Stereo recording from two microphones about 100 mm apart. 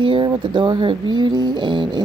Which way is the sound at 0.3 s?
50° right (ahead or behind).